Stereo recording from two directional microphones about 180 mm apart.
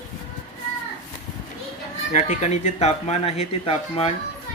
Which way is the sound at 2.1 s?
40° left (ahead or behind).